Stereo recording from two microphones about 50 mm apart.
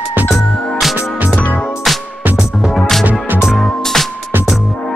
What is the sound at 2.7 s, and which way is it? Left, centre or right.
Music, centre.